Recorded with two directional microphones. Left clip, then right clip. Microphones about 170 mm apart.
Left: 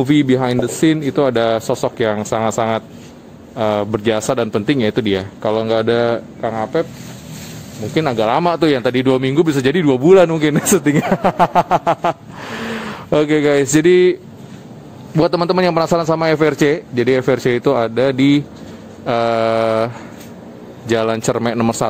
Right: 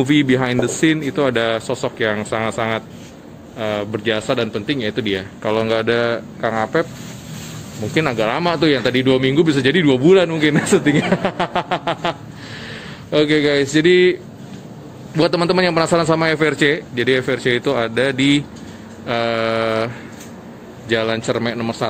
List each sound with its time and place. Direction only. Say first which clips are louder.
0.0 s a man's voice: left 1 dB; 20° left (ahead or behind)
5.5 s speech: left 1 dB; 15° left (ahead or behind)
7.9 s speech: left 1 dB; 15° left (ahead or behind)
8.2 s a man's voice: left 5 dB; 30° left (ahead or behind)
15.1 s a man's voice: left 1 dB; 30° left (ahead or behind)
20.9 s a man's voice: left 2 dB; 35° left (ahead or behind)